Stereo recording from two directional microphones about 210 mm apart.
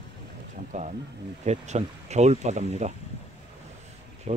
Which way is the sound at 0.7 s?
35° right (ahead or behind).